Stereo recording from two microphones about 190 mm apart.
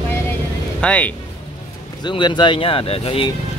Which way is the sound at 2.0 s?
25° left (ahead or behind).